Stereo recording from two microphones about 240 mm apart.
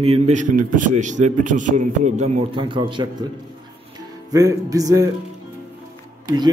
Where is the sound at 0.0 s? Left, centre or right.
Right.